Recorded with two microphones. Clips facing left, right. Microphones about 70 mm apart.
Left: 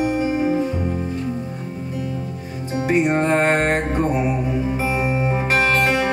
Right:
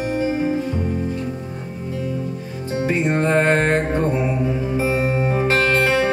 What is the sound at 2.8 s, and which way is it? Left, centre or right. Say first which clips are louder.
Music: left 2 dB; centre.